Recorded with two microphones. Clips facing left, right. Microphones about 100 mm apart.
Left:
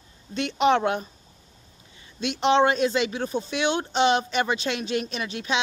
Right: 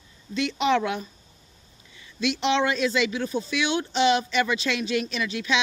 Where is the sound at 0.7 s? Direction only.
35° left (ahead or behind).